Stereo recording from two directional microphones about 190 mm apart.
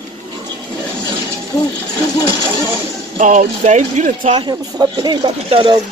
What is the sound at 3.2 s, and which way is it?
Speech, 40° right (ahead or behind).